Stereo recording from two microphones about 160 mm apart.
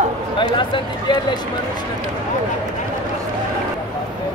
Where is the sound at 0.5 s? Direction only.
30° left (ahead or behind).